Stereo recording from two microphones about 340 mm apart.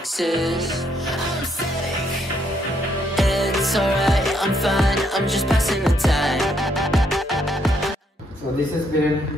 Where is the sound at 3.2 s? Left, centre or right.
Centre.